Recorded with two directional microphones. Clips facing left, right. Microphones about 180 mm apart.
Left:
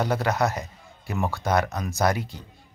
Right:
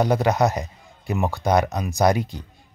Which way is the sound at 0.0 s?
15° right (ahead or behind).